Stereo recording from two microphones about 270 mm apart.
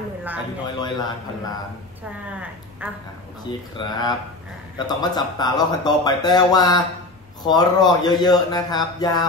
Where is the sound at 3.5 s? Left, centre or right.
Centre.